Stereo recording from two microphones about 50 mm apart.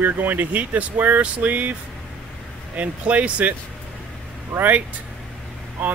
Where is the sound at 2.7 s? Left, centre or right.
Right.